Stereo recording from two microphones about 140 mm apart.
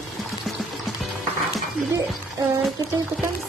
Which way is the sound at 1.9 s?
25° right (ahead or behind).